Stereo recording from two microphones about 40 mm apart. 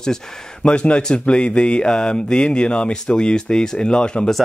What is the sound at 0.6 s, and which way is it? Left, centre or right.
Speech, left.